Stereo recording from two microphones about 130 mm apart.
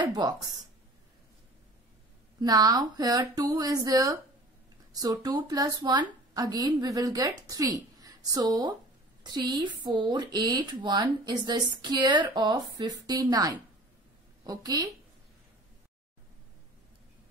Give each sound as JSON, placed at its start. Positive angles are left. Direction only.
{"t": 0.0, "sound": "speech", "side_deg": -35}
{"t": 2.4, "sound": "a woman's voice", "side_deg": -30}